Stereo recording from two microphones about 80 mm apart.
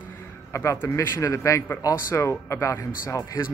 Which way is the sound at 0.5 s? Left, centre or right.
Left.